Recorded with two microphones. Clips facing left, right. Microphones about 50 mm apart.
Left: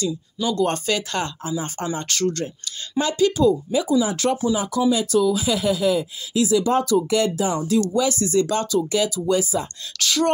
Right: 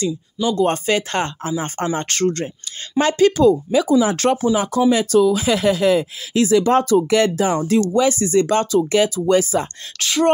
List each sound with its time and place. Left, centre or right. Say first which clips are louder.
0.5 s speech: right 4 dB; right
3.0 s speech: right 4 dB; right
4.6 s speech: right 4 dB; right
6.8 s speech: right 4 dB; right
7.1 s speech: right 4 dB; right
7.9 s speech: right 4 dB; right
9.2 s speech: right 5 dB; right
9.9 s speech: right 4 dB; right